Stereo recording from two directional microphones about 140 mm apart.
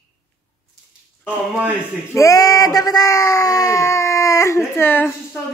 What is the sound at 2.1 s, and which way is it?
Speech, 25° left (ahead or behind).